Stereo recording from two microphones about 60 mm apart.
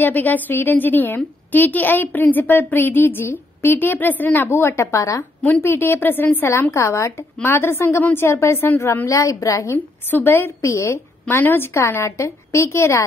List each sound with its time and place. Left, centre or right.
0.0 s a woman's voice: left
5.6 s a woman's voice: left
6.7 s a woman's voice: left
9.0 s a woman's voice: left
10.1 s a woman's voice: left
11.2 s a woman's voice: left
12.0 s a woman's voice: left